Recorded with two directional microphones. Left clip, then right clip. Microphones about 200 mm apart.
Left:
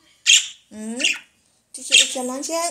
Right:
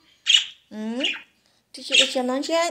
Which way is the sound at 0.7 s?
25° right (ahead or behind).